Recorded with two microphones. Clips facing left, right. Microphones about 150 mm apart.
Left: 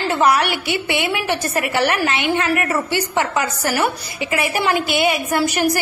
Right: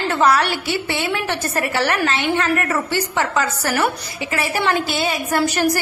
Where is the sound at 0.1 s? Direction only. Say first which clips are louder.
Even; 15° left (ahead or behind).